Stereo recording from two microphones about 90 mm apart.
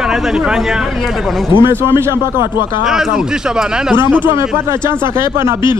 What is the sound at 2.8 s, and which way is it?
Speech, 5° right (ahead or behind).